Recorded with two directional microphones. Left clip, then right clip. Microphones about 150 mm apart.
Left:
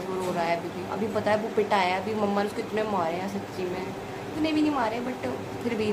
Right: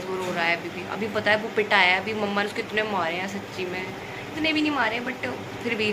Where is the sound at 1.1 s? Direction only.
15° left (ahead or behind).